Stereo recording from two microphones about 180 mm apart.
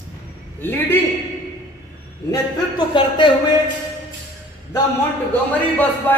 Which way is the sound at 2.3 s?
25° left (ahead or behind).